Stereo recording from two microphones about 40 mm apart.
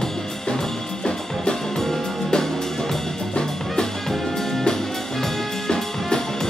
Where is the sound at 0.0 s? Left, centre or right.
Centre.